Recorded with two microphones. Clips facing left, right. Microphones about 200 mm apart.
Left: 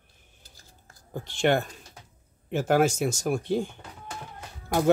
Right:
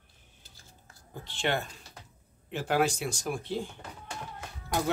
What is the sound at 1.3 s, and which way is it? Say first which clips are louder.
Speech: left 7 dB; 50° left (ahead or behind).